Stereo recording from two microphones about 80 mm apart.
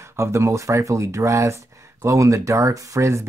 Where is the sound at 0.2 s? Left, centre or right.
Right.